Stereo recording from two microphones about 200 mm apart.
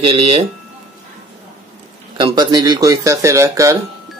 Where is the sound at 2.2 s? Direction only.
25° right (ahead or behind).